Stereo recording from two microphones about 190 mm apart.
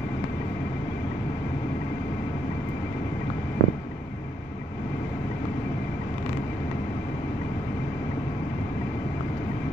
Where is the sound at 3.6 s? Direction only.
75° right (ahead or behind).